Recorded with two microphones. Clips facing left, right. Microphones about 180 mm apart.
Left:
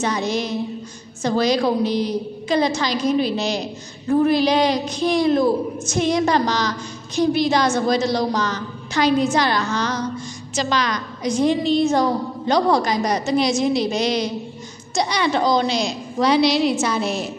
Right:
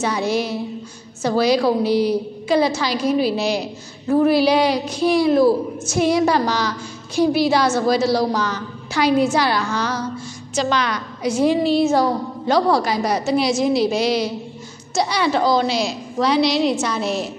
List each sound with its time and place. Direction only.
0.0 s a woman's voice: 10° right (ahead or behind)